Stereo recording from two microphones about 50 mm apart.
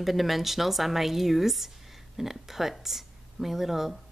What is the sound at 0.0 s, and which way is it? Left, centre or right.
Speech, centre.